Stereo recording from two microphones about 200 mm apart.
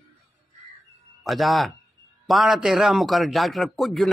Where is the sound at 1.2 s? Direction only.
Centre (ahead or behind).